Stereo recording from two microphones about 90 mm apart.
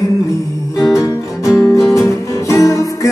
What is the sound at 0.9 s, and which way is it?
Music, 40° left (ahead or behind).